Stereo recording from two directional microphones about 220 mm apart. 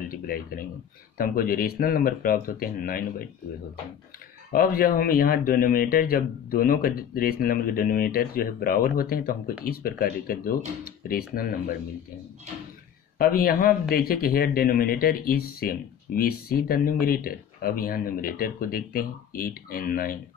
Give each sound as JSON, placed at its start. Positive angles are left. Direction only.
{"t": 0.1, "sound": "speech", "side_deg": 40}
{"t": 4.5, "sound": "speech", "side_deg": 40}
{"t": 13.2, "sound": "speech", "side_deg": 45}